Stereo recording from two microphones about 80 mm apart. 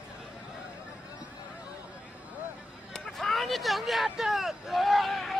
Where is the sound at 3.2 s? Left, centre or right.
Centre.